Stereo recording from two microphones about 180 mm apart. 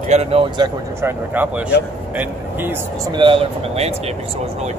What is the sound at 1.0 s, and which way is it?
Speech, 10° right (ahead or behind).